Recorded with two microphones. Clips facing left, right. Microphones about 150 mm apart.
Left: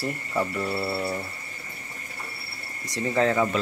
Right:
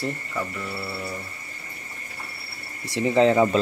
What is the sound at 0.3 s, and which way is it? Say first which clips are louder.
Mantra: left 4 dB; 25° left (ahead or behind).